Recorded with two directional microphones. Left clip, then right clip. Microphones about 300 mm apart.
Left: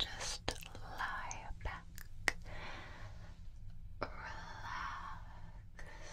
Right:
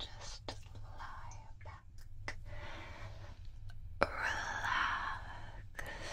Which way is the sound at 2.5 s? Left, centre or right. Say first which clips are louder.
Left 1 dB; centre.